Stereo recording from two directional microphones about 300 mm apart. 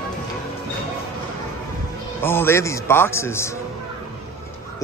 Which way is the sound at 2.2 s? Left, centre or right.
Centre.